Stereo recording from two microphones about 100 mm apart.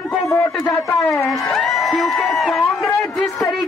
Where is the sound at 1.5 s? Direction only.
5° left (ahead or behind).